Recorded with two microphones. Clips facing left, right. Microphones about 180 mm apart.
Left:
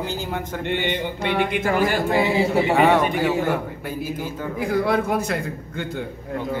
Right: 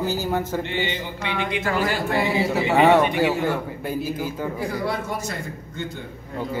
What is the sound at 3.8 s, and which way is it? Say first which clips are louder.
Speech: right 2 dB; 10° right (ahead or behind).